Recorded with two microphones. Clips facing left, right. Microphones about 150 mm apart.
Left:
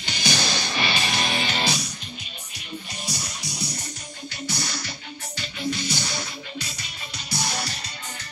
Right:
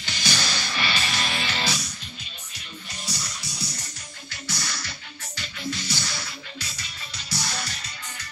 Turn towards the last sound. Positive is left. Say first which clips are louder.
# left 3 dB
turn(degrees=15)  # may be behind; listen again after turning